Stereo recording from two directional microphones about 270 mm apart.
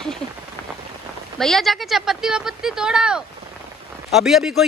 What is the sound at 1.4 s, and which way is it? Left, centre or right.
Speech, centre.